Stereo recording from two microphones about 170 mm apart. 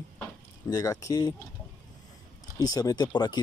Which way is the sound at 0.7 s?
20° left (ahead or behind).